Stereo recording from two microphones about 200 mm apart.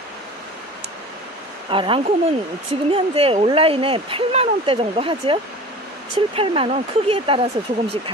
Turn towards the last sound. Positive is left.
turn(degrees=-30)  # may be behind; listen again after turning